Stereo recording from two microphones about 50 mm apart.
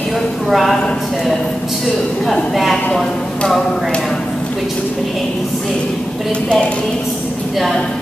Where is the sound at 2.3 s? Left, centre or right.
Centre.